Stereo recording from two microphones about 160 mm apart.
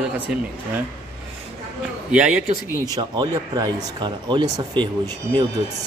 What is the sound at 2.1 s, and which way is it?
A man's voice, 5° right (ahead or behind).